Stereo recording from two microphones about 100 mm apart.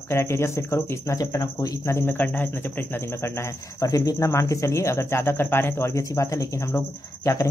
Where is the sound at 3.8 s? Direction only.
35° left (ahead or behind).